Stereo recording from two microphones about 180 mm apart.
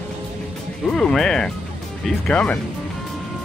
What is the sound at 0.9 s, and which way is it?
Speech, 5° left (ahead or behind).